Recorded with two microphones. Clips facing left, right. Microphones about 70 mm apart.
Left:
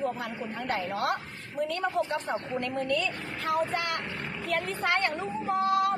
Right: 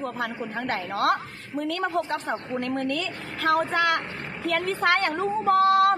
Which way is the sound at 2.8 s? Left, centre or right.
Right.